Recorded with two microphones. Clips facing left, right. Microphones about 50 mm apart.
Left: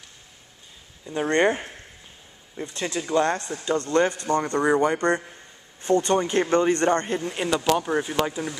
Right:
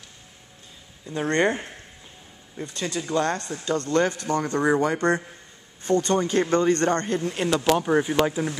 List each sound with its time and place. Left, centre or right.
1.0 s speech: centre
2.7 s speech: centre
4.6 s speech: centre
5.9 s speech: centre
7.7 s speech: centre